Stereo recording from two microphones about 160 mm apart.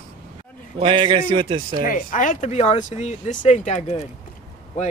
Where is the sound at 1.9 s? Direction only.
55° left (ahead or behind).